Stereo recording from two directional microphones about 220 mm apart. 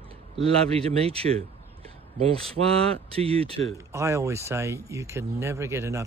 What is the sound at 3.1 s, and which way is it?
Speech, 25° right (ahead or behind).